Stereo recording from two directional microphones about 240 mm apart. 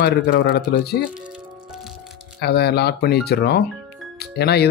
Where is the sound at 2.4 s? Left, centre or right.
Left.